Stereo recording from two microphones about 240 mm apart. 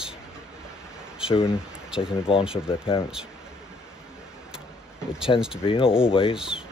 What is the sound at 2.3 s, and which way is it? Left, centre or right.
Speech, left.